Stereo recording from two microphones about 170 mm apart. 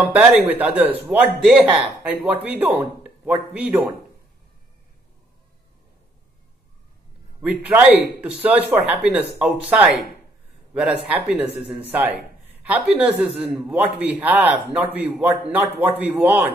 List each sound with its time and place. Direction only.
0.1 s speech: 10° right (ahead or behind)
7.4 s a man's voice: 10° right (ahead or behind)